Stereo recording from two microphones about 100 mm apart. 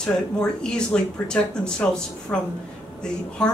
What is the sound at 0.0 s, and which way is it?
Speech, 10° left (ahead or behind).